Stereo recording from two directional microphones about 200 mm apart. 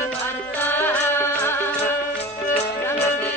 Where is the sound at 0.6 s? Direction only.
10° left (ahead or behind).